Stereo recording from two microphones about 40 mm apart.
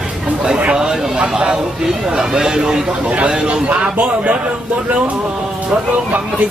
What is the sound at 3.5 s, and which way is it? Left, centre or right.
Speech, right.